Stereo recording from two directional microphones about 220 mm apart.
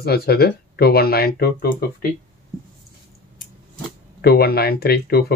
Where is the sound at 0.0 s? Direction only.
45° left (ahead or behind).